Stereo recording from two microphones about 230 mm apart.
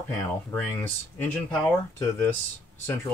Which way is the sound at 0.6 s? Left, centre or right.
Centre.